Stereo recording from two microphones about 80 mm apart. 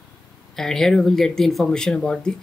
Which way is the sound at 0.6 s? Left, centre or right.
Centre.